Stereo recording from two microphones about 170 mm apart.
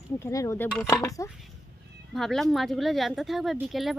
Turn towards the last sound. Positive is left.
turn(degrees=0)  # may be behind; listen again after turning